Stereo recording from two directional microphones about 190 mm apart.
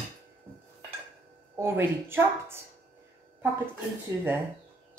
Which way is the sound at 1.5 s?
10° right (ahead or behind).